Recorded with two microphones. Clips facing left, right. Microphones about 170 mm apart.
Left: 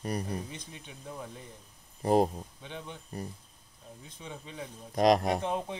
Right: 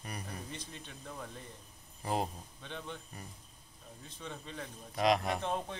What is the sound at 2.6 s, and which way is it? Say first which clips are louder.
Speech: right 1 dB; 15° left (ahead or behind).